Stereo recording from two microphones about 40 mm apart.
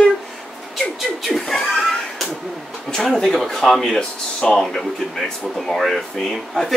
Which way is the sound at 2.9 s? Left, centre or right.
Centre.